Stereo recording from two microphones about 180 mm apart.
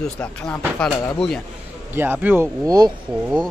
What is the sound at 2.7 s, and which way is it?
Speech, 20° right (ahead or behind).